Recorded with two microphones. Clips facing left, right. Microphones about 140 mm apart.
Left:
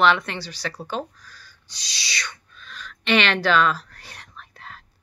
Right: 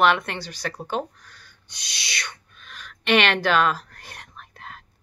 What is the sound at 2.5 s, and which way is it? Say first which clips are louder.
Whispering: left 3 dB; 55° right (ahead or behind).